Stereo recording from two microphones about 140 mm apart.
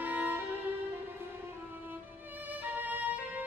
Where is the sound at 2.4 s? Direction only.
10° right (ahead or behind).